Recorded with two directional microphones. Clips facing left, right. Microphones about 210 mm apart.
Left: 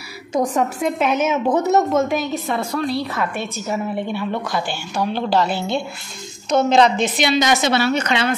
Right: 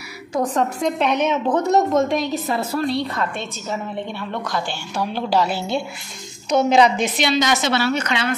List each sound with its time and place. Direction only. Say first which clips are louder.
0.3 s a woman's voice: left 1 dB; 10° left (ahead or behind); by 7.1 s 10° right (ahead or behind)
7.2 s a woman's voice: left 2 dB; 10° left (ahead or behind); by 8.3 s 25° left (ahead or behind)